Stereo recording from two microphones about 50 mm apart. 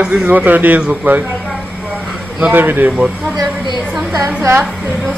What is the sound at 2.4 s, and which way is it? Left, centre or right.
Speech, right.